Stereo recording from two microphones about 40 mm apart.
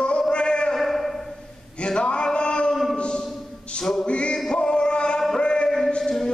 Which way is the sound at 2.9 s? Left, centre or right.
Left.